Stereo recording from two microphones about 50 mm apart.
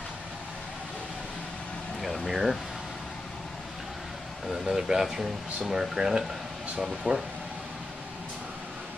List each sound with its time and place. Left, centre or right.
2.0 s a sound: centre
4.5 s speech: centre
7.0 s speech: right